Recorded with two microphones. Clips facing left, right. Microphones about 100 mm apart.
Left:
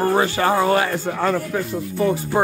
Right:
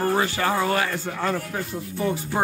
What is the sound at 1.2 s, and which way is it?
Speech, 90° left.